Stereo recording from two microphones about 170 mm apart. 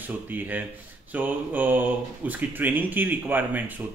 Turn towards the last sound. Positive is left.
turn(degrees=-10)  # may be behind; listen again after turning